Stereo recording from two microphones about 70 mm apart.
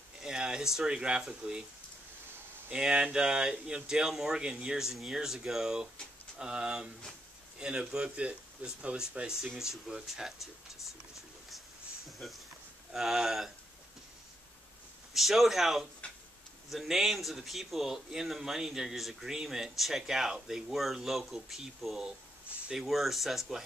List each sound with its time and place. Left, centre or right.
0.2 s speech: centre
2.7 s speech: centre
12.2 s speech: centre
12.9 s speech: centre
15.1 s speech: centre